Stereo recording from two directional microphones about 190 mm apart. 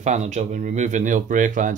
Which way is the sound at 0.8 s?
40° right (ahead or behind).